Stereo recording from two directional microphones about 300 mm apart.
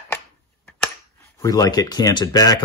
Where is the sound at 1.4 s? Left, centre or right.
Centre.